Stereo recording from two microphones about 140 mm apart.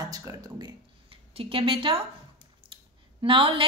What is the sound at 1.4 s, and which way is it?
Speech, 40° right (ahead or behind).